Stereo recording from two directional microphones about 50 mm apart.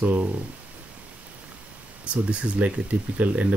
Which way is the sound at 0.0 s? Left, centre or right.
Right.